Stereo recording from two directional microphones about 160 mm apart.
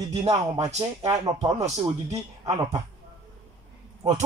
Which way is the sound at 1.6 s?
45° right (ahead or behind).